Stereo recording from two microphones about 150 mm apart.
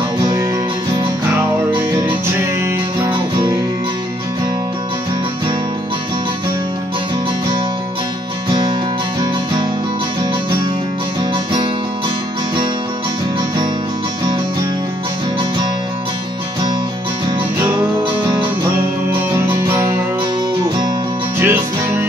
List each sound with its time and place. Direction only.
1.7 s music: 10° right (ahead or behind)
19.3 s music: 15° right (ahead or behind)
21.4 s music: 15° right (ahead or behind)